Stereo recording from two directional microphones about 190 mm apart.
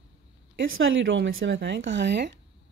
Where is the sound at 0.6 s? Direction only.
90° right; by 2.3 s 65° right (ahead or behind).